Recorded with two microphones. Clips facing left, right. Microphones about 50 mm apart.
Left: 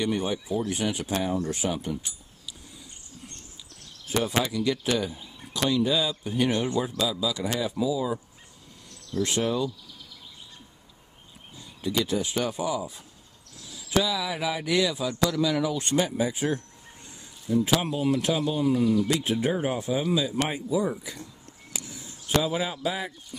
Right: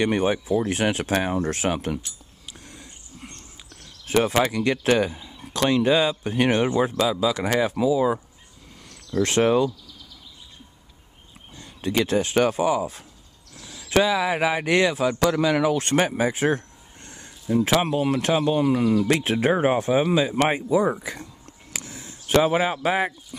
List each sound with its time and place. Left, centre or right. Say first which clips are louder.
0.0 s speech: right 6 dB; right
2.4 s dog: right 3 dB; right
4.1 s speech: right 6 dB; right
11.5 s speech: right 4 dB; right
21.7 s a sound: right 3 dB; right
22.8 s speech: right 7 dB; right